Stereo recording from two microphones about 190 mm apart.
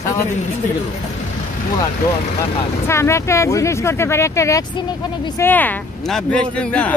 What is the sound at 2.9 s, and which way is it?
Speech, 15° left (ahead or behind).